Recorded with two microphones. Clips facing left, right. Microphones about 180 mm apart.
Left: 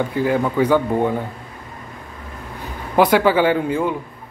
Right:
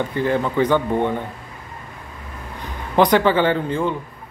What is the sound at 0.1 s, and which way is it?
Speech, 10° left (ahead or behind).